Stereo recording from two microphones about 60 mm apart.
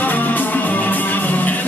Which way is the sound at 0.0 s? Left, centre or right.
Left.